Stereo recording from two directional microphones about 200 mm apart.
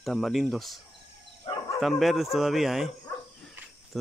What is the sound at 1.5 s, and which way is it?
Bow-wow, 25° left (ahead or behind).